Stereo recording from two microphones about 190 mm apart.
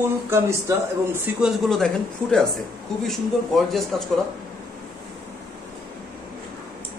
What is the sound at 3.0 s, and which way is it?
A man's voice, centre (ahead or behind).